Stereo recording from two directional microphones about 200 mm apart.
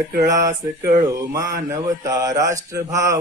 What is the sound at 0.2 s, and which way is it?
Speech, 15° right (ahead or behind).